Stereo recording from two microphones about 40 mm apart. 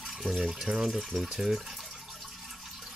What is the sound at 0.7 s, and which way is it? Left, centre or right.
Speech, centre.